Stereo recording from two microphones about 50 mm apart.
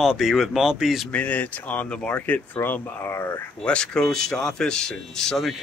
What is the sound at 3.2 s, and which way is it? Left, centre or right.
Speech, left.